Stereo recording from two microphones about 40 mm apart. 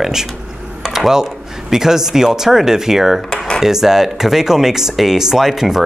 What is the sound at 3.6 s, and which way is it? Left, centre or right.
Speech, centre.